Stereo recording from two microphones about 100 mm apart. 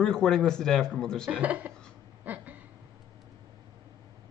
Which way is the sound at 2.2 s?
15° right (ahead or behind).